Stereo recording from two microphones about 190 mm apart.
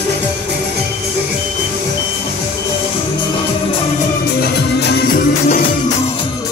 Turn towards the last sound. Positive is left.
turn(degrees=50)  # may be behind; listen again after turning